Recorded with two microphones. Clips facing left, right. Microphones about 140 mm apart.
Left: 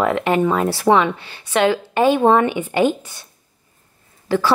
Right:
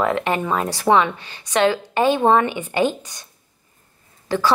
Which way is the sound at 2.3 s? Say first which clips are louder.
Left 2 dB; 15° left (ahead or behind).